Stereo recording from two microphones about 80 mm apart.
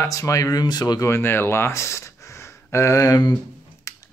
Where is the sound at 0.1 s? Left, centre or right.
Left.